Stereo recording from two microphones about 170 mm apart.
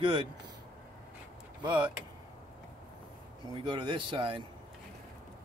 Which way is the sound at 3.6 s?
25° right (ahead or behind).